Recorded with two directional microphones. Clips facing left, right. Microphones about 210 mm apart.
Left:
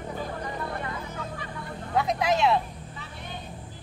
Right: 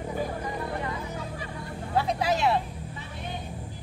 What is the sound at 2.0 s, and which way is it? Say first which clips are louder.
Vehicle: left 1 dB; 35° right (ahead or behind).